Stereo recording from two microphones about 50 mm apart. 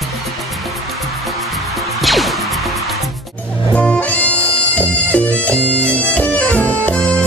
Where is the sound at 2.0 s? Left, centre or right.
Centre.